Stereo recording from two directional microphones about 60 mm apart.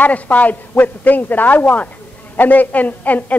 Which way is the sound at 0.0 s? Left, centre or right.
Left.